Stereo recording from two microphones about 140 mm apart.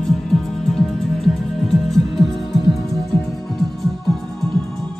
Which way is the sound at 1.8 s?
Centre (ahead or behind).